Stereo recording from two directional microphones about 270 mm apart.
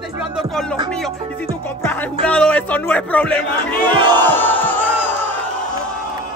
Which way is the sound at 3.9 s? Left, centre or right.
Centre.